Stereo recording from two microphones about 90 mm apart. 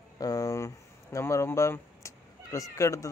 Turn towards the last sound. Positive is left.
turn(degrees=35)  # may be behind; listen again after turning